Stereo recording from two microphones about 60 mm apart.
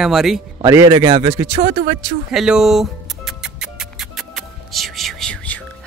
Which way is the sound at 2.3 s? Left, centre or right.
Centre.